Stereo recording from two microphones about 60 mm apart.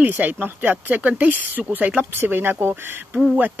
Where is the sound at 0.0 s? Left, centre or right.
Right.